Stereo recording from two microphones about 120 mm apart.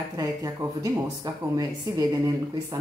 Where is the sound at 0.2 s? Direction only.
30° right (ahead or behind).